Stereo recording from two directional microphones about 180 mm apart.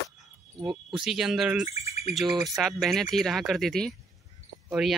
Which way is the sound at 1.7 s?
35° left (ahead or behind).